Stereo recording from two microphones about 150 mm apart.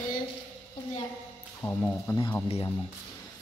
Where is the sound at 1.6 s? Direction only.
15° left (ahead or behind).